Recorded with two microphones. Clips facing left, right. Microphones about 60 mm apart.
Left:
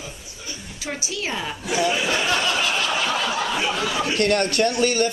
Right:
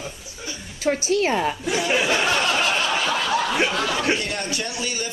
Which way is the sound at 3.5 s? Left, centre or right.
Right.